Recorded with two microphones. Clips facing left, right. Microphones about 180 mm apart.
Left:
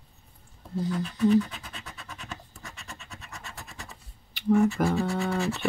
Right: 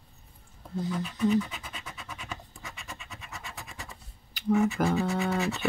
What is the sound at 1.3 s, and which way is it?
Scratch, 10° right (ahead or behind).